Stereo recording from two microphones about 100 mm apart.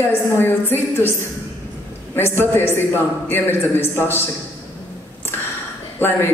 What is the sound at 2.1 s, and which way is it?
A man's voice, 20° left (ahead or behind).